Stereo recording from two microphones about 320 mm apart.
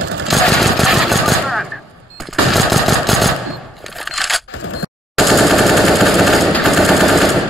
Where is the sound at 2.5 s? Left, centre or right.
Centre.